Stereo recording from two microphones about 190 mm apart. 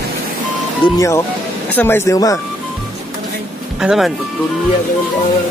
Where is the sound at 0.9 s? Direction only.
15° left (ahead or behind).